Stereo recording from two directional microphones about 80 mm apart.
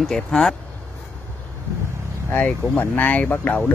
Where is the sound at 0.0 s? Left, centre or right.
Centre.